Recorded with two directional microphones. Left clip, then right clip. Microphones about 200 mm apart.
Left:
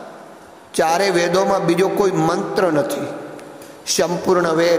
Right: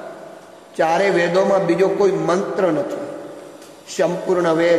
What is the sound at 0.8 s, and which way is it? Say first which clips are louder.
A man's voice: even; 30° left (ahead or behind).